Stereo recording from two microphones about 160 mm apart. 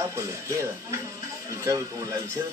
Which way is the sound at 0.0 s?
20° right (ahead or behind).